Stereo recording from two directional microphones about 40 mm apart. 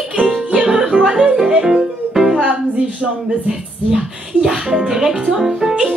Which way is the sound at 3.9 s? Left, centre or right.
Centre.